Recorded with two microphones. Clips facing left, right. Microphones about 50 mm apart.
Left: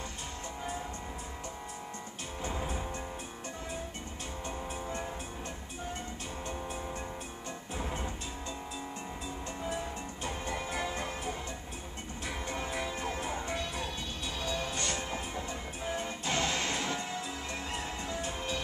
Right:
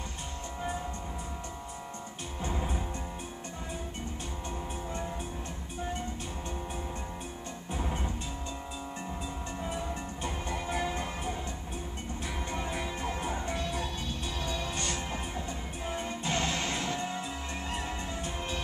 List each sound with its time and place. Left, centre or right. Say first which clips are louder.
2.5 s music: right 2 dB; centre
7.7 s music: right 2 dB; centre
10.7 s music: right 5 dB; centre
12.6 s music: right 1 dB; centre
15.3 s music: right 1 dB; centre
16.3 s music: even; right